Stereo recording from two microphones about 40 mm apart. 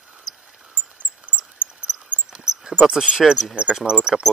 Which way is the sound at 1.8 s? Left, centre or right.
Right.